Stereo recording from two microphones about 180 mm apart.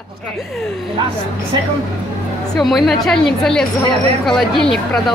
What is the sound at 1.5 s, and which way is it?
Speech, 25° right (ahead or behind).